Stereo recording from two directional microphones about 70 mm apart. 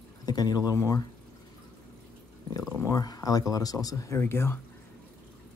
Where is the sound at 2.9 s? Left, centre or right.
Left.